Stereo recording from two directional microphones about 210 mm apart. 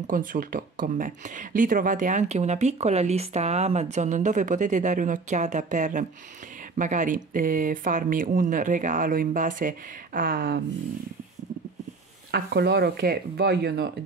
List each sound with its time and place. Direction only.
0.0 s speech: 40° right (ahead or behind)
12.3 s speech: 50° right (ahead or behind)